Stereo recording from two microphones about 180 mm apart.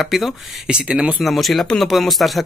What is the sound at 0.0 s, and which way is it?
Speech, centre (ahead or behind).